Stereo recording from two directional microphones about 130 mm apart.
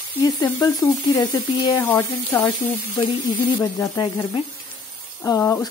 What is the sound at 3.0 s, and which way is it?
Speech, 35° left (ahead or behind).